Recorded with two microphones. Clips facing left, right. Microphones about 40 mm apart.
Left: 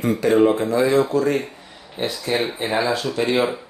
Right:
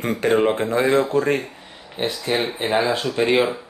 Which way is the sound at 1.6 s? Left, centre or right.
Right.